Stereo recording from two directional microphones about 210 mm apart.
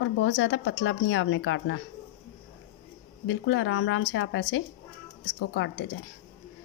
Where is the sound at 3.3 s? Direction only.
65° left (ahead or behind).